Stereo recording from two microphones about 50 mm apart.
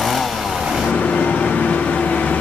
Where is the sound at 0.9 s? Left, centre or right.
Left.